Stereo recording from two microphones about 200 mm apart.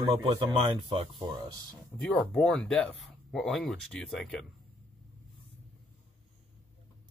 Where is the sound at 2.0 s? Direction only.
5° left (ahead or behind).